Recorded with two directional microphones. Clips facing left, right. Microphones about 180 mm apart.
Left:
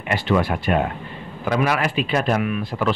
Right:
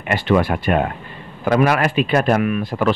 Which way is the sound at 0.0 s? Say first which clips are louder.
Right 3 dB; 55° right (ahead or behind).